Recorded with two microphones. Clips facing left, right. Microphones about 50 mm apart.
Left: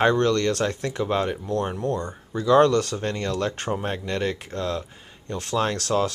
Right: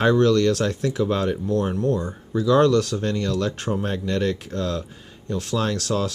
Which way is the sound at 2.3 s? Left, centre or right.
Centre.